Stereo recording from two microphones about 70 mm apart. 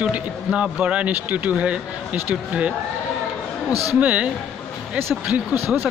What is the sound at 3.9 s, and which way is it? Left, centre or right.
Speech, centre.